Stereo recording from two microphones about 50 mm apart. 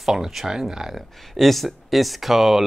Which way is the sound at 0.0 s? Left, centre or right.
Centre.